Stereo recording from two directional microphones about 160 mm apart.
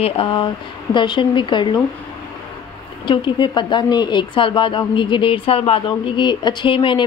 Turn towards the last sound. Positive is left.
turn(degrees=30)  # may be behind; listen again after turning